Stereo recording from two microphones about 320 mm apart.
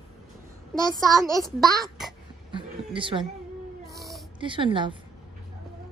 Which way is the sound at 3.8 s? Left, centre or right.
Centre.